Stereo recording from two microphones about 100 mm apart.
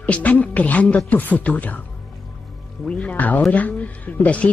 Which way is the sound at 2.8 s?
10° left (ahead or behind).